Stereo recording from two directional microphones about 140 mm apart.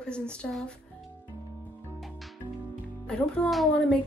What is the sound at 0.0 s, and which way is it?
Speech, 5° left (ahead or behind).